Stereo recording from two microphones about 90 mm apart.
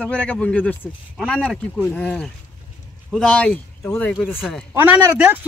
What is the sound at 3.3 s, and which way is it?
Speech, 15° left (ahead or behind).